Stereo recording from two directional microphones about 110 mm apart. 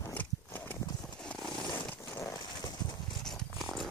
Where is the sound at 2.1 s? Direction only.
30° left (ahead or behind).